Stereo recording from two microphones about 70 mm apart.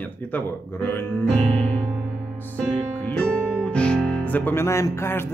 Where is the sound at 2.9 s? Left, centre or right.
Left.